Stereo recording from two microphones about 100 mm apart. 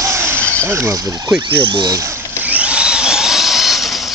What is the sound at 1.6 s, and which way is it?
Speech, 50° right (ahead or behind).